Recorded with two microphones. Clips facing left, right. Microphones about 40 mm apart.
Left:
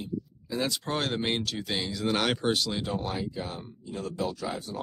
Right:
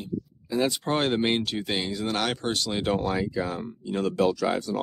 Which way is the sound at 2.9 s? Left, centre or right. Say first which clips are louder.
Right 6 dB; right.